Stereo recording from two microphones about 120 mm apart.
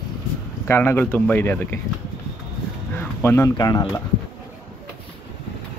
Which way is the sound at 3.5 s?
30° left (ahead or behind).